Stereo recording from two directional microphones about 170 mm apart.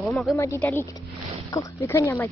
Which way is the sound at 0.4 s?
15° left (ahead or behind).